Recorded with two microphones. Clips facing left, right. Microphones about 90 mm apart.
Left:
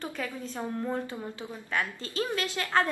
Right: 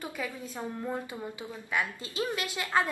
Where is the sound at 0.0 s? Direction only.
10° right (ahead or behind).